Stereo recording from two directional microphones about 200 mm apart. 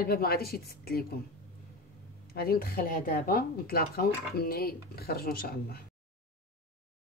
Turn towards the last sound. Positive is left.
turn(degrees=50)  # may be behind; listen again after turning